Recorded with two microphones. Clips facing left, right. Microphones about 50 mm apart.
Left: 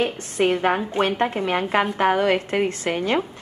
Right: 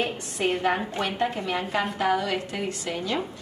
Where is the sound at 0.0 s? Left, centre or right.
Left.